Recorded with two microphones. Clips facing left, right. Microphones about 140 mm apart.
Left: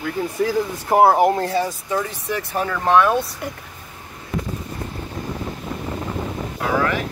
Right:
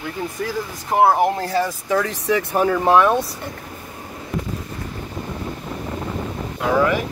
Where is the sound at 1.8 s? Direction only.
90° right.